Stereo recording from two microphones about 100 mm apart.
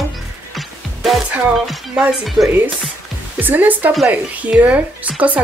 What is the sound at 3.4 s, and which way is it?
Speech, 20° right (ahead or behind).